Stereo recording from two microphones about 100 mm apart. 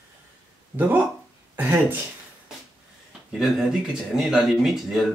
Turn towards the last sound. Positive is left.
turn(degrees=0)  # may be behind; listen again after turning